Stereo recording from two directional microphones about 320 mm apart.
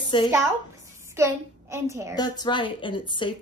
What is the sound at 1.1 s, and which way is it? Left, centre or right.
A woman's voice, centre.